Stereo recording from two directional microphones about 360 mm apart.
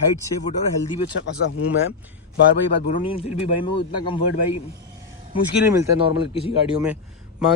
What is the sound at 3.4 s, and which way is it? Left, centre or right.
Speech, left.